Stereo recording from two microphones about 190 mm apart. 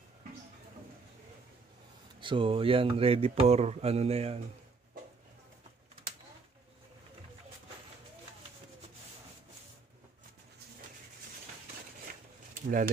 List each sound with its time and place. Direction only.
2.1 s speech: 25° right (ahead or behind)
12.6 s speech: 50° right (ahead or behind)